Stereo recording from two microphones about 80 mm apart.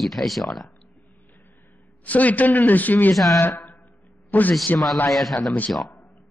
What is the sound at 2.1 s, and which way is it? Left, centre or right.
Speech, centre.